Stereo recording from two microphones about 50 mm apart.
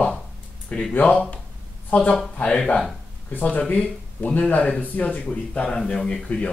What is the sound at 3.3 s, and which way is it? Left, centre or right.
Speech, left.